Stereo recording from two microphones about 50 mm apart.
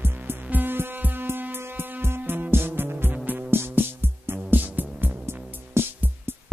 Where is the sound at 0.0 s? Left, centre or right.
Right.